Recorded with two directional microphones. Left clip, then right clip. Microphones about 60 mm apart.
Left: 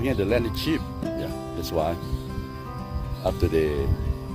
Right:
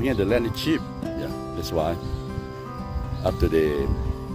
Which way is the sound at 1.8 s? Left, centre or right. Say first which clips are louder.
Even; right.